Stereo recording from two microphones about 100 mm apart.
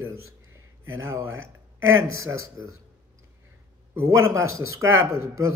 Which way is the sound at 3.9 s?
30° right (ahead or behind).